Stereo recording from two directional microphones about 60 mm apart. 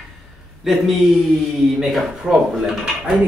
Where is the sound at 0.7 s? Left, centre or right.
Centre.